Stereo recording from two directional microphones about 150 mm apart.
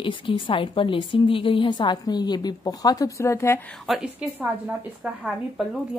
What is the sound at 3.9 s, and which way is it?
A woman's voice, 5° right (ahead or behind).